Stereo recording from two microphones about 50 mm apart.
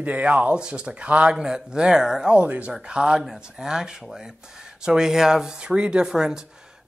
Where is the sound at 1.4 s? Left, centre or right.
Centre.